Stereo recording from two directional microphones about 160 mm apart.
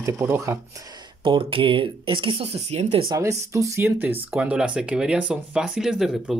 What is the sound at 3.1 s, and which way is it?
Speech, 20° right (ahead or behind).